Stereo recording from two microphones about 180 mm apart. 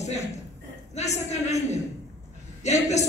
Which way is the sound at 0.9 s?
40° left (ahead or behind).